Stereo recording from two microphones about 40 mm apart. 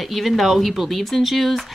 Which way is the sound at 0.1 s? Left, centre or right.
Centre.